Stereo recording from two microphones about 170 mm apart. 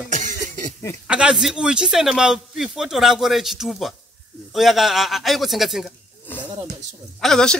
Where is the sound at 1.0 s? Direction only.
5° right (ahead or behind).